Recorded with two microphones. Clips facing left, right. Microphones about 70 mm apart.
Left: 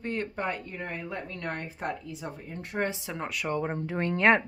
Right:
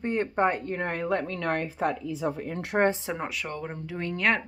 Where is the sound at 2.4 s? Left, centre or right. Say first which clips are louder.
Right 7 dB; right.